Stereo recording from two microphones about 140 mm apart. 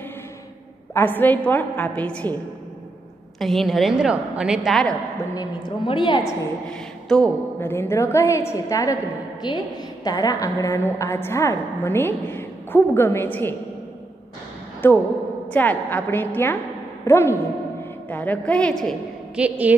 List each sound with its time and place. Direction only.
0.9 s a woman's voice: 15° left (ahead or behind)
3.3 s a woman's voice: centre (ahead or behind)
5.3 s a woman's voice: 30° left (ahead or behind)
6.7 s speech: 5° left (ahead or behind)
7.7 s a woman's voice: 15° left (ahead or behind)
14.8 s a woman's voice: 15° left (ahead or behind)
19.3 s a woman's voice: 10° right (ahead or behind)